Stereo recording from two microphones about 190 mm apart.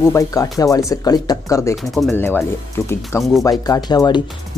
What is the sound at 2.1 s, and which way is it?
Speech, 10° left (ahead or behind).